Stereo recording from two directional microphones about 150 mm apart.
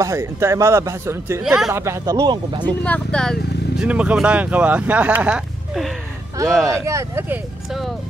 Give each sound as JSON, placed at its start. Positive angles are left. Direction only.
{"t": 0.0, "sound": "speech", "side_deg": -20}
{"t": 1.4, "sound": "speech", "side_deg": 0}
{"t": 1.7, "sound": "speech", "side_deg": -20}
{"t": 2.8, "sound": "speech", "side_deg": 10}
{"t": 3.8, "sound": "speech", "side_deg": -10}
{"t": 6.4, "sound": "speech", "side_deg": 5}
{"t": 6.9, "sound": "speech", "side_deg": -20}